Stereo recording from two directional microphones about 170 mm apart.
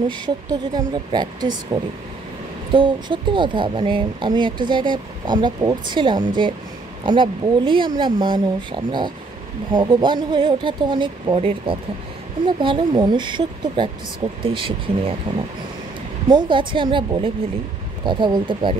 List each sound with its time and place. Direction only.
0.1 s speech: 25° right (ahead or behind)
16.3 s speech: 25° right (ahead or behind)